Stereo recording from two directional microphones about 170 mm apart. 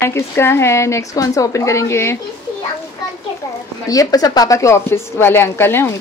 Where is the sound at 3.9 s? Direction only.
20° left (ahead or behind).